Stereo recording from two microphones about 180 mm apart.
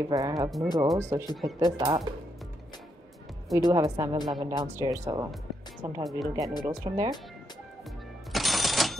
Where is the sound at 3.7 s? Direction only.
20° right (ahead or behind).